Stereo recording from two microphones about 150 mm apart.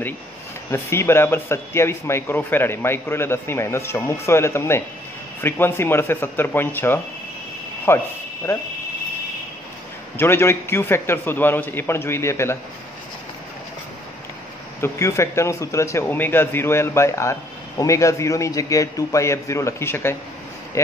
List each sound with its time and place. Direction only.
0.7 s speech: 20° left (ahead or behind)
10.1 s speech: 15° left (ahead or behind)
14.8 s a man's voice: 20° left (ahead or behind)